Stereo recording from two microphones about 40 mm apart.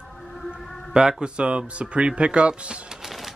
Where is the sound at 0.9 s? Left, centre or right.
Right.